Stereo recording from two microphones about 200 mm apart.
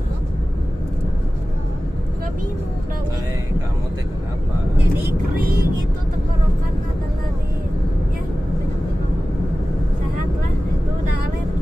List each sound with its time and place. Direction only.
5.3 s vehicle: 45° right (ahead or behind)